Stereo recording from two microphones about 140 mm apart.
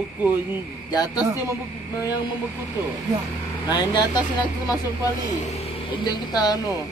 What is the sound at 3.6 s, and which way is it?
Speech, 30° left (ahead or behind).